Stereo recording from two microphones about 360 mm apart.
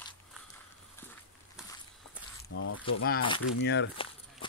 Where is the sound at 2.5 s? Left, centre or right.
Left.